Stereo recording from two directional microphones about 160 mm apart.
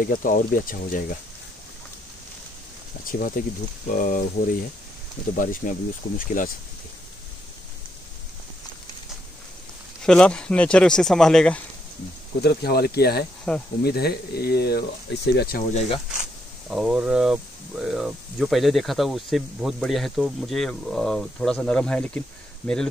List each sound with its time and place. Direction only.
0.0 s speech: 60° left (ahead or behind)
3.1 s speech: 60° left (ahead or behind)
10.0 s speech: 5° left (ahead or behind)
12.4 s speech: 80° left
13.5 s speech: 5° left (ahead or behind)
13.8 s speech: 80° left
15.3 s speech: 70° left (ahead or behind)
16.1 s speech: 5° right (ahead or behind)